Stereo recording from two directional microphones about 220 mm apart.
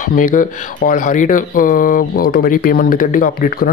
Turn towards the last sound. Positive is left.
turn(degrees=40)  # may be behind; listen again after turning